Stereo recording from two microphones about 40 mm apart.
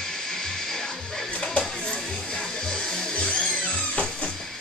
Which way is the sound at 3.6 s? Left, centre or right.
Left.